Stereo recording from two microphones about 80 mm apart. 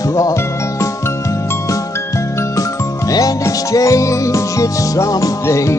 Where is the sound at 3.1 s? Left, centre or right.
Left.